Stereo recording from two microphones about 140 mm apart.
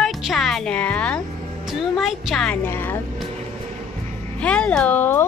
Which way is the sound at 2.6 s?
15° left (ahead or behind).